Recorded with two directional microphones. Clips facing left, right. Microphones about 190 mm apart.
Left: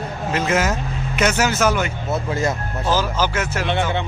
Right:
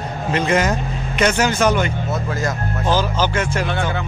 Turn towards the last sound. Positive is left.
turn(degrees=25)  # may be behind; listen again after turning